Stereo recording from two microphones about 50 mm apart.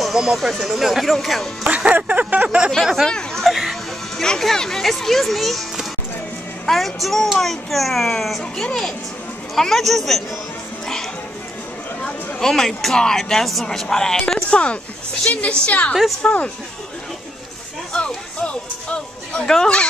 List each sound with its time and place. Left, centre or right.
0.0 s speech: centre
2.0 s a sound: right
2.7 s speech: centre
3.3 s music: centre
4.2 s speech: centre
12.0 s speech: centre
14.5 s speech: left
17.9 s music: left